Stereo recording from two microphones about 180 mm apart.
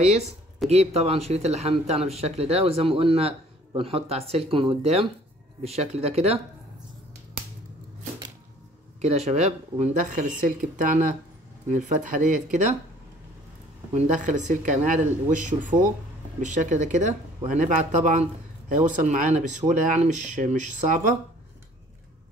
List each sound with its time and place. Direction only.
0.0 s a man's voice: 35° right (ahead or behind)
9.0 s speech: 35° right (ahead or behind)
13.9 s a man's voice: 45° right (ahead or behind)